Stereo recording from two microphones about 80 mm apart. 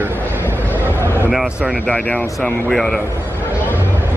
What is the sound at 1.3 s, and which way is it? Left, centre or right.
Speech, centre.